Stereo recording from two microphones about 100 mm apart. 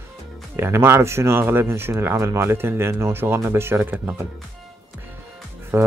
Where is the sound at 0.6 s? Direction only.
25° right (ahead or behind).